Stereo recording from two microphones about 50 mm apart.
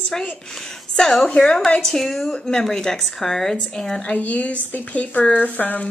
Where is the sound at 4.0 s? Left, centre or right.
Left.